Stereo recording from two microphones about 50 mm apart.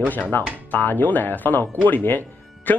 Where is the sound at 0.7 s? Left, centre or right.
Left.